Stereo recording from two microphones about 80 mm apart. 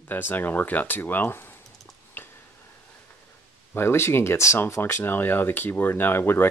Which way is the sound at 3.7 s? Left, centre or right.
Left.